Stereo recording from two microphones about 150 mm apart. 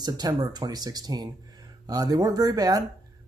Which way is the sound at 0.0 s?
25° right (ahead or behind).